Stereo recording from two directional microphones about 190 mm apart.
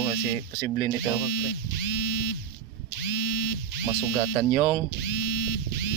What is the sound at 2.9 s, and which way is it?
Electric toothbrush, 65° right (ahead or behind).